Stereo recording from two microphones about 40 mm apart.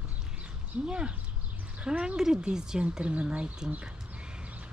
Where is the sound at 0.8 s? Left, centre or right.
Right.